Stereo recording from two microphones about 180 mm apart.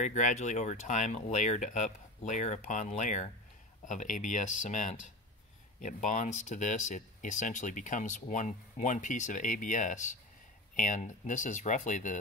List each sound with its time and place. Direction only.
0.0 s speech: 45° left (ahead or behind)